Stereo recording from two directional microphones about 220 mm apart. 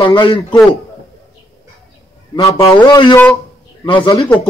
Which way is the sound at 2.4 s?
20° left (ahead or behind).